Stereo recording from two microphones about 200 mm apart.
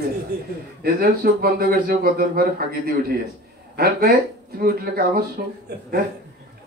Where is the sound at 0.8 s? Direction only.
50° right (ahead or behind).